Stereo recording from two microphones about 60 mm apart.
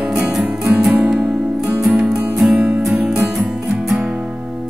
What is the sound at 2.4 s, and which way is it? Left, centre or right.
Music, centre.